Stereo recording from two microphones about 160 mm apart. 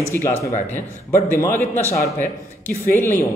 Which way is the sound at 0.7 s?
15° left (ahead or behind).